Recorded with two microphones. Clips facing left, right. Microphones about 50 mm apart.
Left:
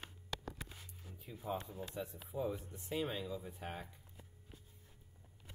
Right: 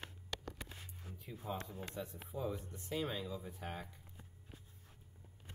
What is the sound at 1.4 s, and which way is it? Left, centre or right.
Speech, centre.